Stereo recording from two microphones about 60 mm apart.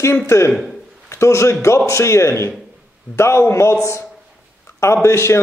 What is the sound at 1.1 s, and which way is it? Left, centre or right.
A man's voice, left.